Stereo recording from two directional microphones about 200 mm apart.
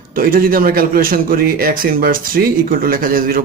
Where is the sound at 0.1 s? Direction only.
45° right (ahead or behind).